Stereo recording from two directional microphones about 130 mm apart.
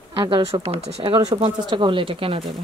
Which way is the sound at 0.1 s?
45° right (ahead or behind).